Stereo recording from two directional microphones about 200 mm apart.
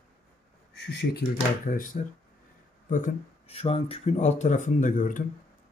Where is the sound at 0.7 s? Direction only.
55° left (ahead or behind).